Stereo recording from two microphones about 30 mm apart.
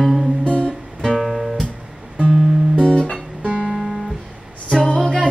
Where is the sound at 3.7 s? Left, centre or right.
Centre.